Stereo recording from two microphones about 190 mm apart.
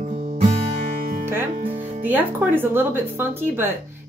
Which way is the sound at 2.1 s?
10° right (ahead or behind).